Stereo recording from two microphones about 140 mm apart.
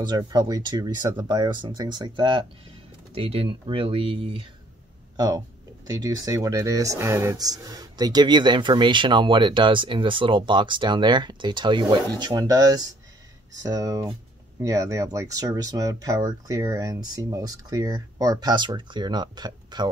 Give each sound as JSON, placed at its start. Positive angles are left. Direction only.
{"t": 0.0, "sound": "speech", "side_deg": -30}
{"t": 5.1, "sound": "speech", "side_deg": -30}